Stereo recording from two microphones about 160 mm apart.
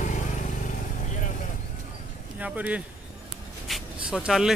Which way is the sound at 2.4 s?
10° right (ahead or behind).